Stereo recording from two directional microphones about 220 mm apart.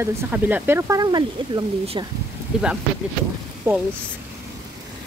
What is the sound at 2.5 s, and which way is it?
Speech, 5° right (ahead or behind).